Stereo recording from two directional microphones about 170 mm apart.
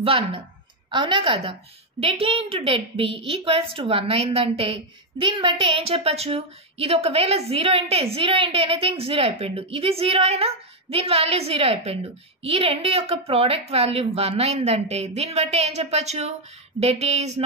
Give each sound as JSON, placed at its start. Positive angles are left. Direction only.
{"t": 0.0, "sound": "a woman's voice", "side_deg": -35}